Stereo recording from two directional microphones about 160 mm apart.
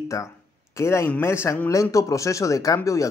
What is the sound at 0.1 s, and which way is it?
A man's voice, 20° left (ahead or behind).